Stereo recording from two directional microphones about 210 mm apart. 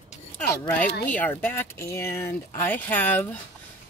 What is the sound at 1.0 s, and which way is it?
Speech, 10° left (ahead or behind).